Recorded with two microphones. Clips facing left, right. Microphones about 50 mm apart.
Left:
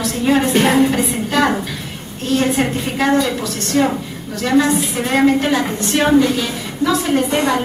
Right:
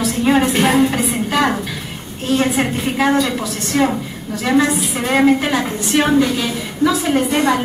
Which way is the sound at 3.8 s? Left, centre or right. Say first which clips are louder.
Even; centre.